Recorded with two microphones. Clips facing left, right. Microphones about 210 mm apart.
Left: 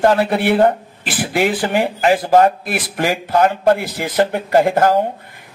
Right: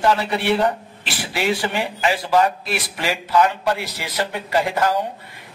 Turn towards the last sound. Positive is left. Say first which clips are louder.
# left 6 dB
turn(degrees=50)  # may be behind; listen again after turning